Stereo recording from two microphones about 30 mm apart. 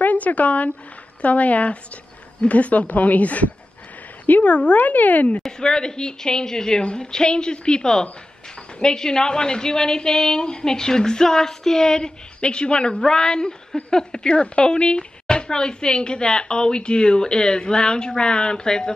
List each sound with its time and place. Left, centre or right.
0.0 s speech: left
4.7 s speech: left
5.6 s speech: left
6.8 s a woman's voice: left
12.4 s speech: left